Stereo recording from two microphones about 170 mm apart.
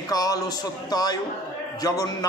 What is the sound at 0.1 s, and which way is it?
A man's voice, 20° left (ahead or behind).